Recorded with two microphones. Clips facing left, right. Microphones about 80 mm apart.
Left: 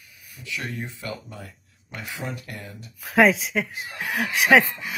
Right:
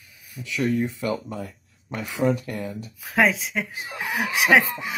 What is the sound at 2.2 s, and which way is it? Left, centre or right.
Speech, right.